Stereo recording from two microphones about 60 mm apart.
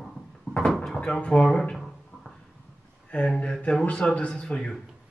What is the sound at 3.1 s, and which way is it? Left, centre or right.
A man's voice, centre.